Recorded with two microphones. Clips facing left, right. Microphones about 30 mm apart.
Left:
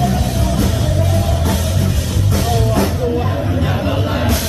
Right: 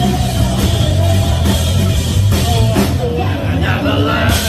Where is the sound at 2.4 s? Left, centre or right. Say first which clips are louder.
Right 1 dB; right.